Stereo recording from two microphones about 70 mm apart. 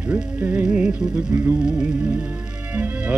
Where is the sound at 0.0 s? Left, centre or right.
Right.